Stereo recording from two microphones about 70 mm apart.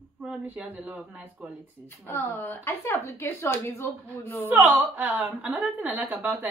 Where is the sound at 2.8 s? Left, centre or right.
Left.